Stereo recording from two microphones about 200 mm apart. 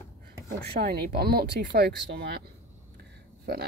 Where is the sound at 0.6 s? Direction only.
50° right (ahead or behind).